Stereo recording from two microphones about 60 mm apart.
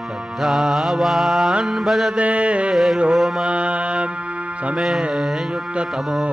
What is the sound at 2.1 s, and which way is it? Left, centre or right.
Mantra, right.